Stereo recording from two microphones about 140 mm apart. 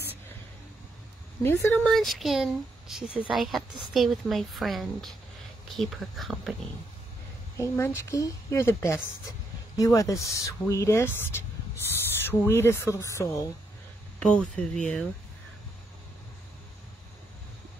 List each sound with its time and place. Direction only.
1.4 s speech: 15° left (ahead or behind)
1.9 s speech: centre (ahead or behind)
7.5 s speech: 20° left (ahead or behind)
14.2 s speech: 5° left (ahead or behind)